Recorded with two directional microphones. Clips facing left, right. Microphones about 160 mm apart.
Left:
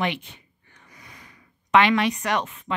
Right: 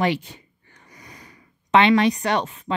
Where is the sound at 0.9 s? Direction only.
40° right (ahead or behind).